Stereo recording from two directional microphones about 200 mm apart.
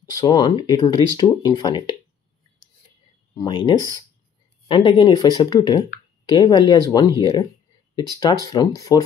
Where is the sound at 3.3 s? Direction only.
25° left (ahead or behind).